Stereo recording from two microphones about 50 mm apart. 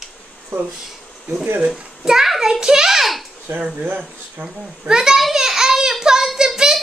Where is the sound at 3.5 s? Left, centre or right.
Right.